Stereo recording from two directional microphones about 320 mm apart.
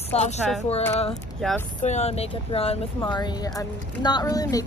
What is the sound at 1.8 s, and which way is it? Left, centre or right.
Speech, left.